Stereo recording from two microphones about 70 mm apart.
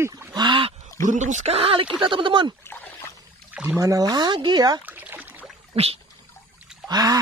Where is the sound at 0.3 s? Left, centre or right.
Right.